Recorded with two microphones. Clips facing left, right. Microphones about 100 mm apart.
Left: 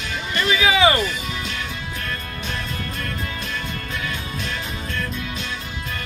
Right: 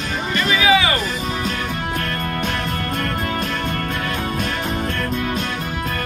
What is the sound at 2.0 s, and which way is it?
Music, 55° right (ahead or behind).